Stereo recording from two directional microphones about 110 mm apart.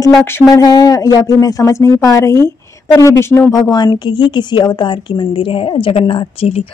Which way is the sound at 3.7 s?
40° left (ahead or behind).